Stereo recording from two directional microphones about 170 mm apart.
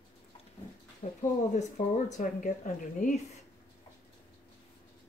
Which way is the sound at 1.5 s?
45° left (ahead or behind).